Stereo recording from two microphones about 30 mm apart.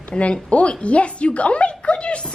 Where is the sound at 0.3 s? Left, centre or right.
Left.